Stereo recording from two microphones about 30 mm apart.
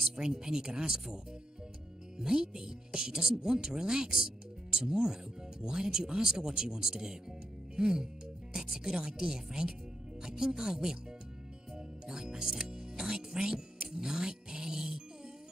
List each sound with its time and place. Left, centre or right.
0.1 s speech: right
2.1 s speech: right
7.7 s music: right
8.5 s speech: centre
11.7 s music: right